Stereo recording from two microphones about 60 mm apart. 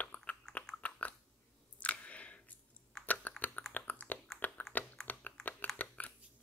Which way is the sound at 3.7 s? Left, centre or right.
Left.